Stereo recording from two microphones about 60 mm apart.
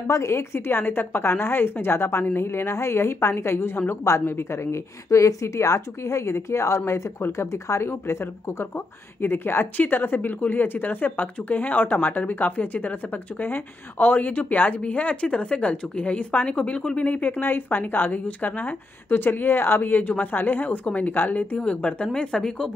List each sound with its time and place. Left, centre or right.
0.1 s a woman's voice: left
4.1 s speech: left
9.2 s a woman's voice: left; by 22.7 s centre